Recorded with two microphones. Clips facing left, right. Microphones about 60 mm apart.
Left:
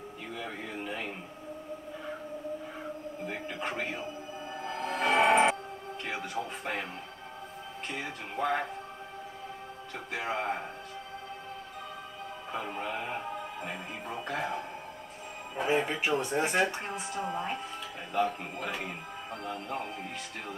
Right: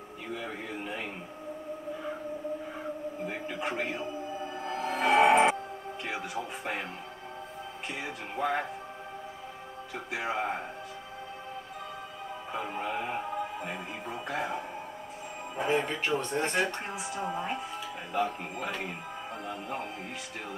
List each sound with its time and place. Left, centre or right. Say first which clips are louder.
0.3 s a sound: right 2 dB; centre
3.3 s speech: even; centre
4.6 s music: right 2 dB; centre
6.0 s speech: even; centre
7.9 s speech: even; centre
10.1 s speech: right 1 dB; centre
12.5 s speech: right 2 dB; centre